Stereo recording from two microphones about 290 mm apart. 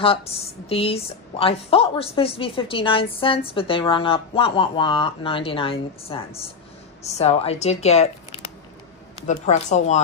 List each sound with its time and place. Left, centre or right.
0.0 s a woman's voice: centre
9.3 s a woman's voice: left